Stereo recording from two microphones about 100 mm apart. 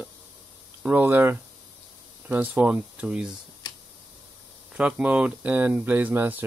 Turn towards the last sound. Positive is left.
turn(degrees=-20)  # may be behind; listen again after turning